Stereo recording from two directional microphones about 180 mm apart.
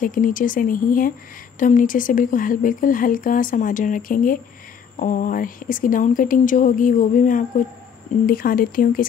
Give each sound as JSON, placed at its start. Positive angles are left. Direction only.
{"t": 0.0, "sound": "speech", "side_deg": 50}